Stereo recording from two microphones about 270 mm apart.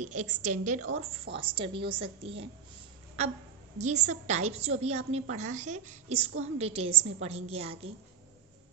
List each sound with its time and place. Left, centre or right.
0.0 s a woman's voice: right
3.7 s a woman's voice: right